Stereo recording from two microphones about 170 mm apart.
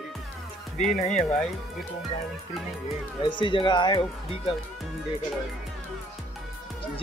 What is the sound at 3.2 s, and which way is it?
Speech, 30° left (ahead or behind).